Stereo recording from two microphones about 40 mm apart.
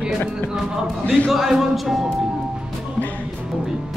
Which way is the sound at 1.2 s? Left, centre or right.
Centre.